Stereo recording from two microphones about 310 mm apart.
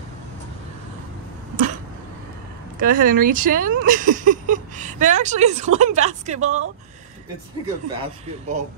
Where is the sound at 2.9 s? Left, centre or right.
Right.